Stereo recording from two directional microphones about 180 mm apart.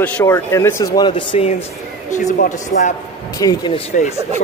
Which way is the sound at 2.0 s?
45° left (ahead or behind).